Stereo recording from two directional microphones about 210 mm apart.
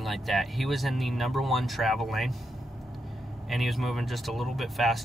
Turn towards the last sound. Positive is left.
turn(degrees=0)  # may be behind; listen again after turning